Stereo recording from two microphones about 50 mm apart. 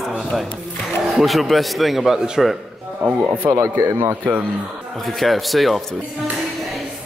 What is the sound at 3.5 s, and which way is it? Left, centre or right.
Speech, right.